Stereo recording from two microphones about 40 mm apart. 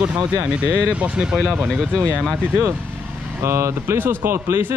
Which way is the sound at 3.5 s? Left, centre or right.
Right.